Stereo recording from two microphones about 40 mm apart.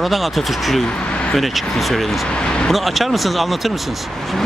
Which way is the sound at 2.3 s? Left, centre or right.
Left.